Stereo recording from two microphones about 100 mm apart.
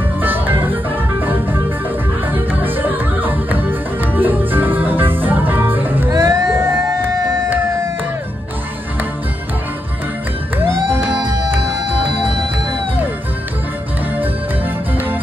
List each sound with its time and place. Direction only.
0.2 s music: 20° right (ahead or behind)
10.6 s music: 20° right (ahead or behind)
14.2 s music: 20° right (ahead or behind)